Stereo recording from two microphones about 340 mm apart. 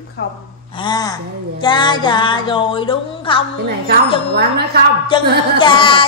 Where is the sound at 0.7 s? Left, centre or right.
Centre.